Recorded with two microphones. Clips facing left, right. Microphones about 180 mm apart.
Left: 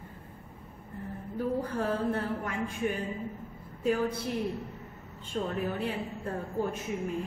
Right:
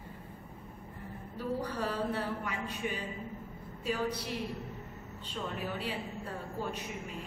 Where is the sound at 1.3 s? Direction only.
50° left (ahead or behind).